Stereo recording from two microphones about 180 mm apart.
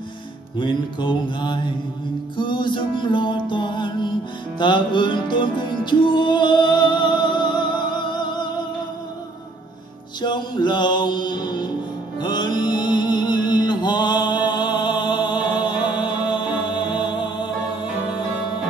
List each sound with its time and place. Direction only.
0.6 s music: 25° left (ahead or behind)
10.2 s music: 25° left (ahead or behind)